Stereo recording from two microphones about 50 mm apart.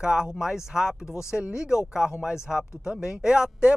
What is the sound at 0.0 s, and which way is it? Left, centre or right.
Speech, centre.